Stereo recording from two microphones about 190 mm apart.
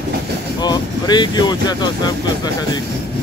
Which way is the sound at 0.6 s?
20° left (ahead or behind).